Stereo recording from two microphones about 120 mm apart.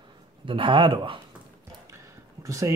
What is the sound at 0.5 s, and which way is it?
Speech, 45° right (ahead or behind).